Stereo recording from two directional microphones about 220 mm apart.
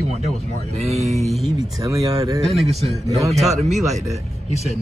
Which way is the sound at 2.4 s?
Centre (ahead or behind).